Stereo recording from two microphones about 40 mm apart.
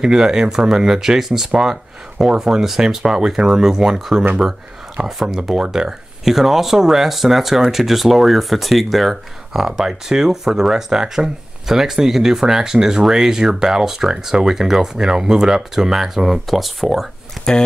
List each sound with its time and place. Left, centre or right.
0.0 s speech: centre